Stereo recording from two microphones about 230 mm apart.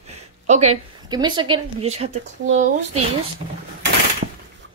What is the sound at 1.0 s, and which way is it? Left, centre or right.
Speech, centre.